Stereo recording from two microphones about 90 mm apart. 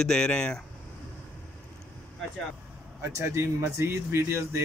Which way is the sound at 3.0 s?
30° right (ahead or behind).